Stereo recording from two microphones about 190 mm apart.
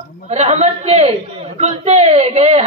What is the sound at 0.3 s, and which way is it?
A man's voice, 35° right (ahead or behind).